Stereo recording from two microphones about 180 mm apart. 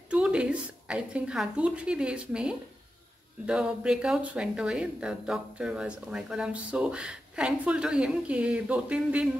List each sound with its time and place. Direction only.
0.1 s speech: 5° right (ahead or behind)